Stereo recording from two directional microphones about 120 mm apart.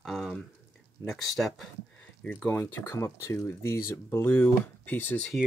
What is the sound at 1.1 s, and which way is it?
Speech, centre (ahead or behind).